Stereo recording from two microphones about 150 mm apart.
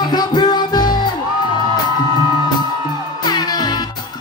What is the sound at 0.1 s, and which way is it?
Music, 25° left (ahead or behind).